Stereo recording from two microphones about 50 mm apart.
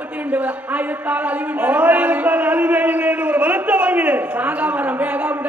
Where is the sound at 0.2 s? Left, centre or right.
Right.